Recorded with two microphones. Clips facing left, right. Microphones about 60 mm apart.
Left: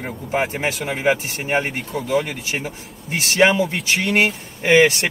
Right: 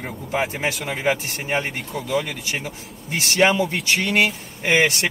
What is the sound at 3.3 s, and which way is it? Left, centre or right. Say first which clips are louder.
Music: left 2 dB; left.